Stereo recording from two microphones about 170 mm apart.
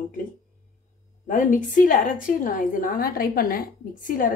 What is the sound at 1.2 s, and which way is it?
A woman's voice, 50° left (ahead or behind).